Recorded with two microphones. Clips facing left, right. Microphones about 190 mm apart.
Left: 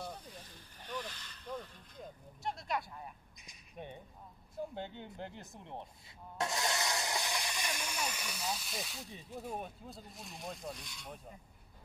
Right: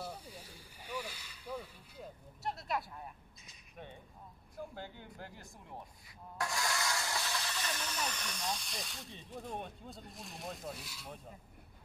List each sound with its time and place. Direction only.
0.0 s vehicle: 10° right (ahead or behind)
3.3 s a sound: 15° left (ahead or behind)
4.6 s speech: 20° left (ahead or behind); by 11.3 s 5° right (ahead or behind)